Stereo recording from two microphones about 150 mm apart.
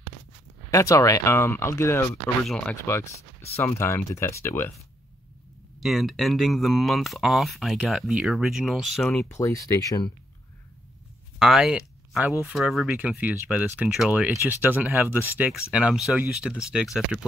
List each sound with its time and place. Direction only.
0.7 s speech: 20° left (ahead or behind)
2.4 s speech: 5° left (ahead or behind)
2.7 s speech: 20° left (ahead or behind)
5.8 s speech: centre (ahead or behind)
9.3 s speech: 20° left (ahead or behind)
11.3 s speech: centre (ahead or behind)